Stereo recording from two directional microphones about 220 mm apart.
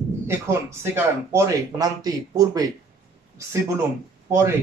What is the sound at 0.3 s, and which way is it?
Speech, 10° right (ahead or behind).